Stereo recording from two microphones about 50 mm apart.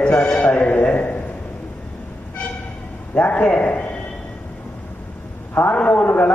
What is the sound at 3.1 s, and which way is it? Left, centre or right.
Speech, left.